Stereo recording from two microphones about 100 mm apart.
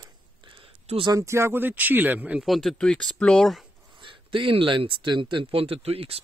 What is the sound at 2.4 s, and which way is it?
Speech, centre (ahead or behind).